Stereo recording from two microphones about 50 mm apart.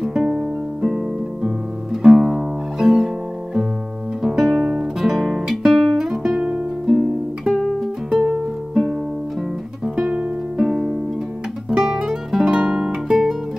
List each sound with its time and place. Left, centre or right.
0.0 s music: centre
4.2 s guitar: centre
6.9 s music: centre
10.7 s music: centre
11.7 s music: centre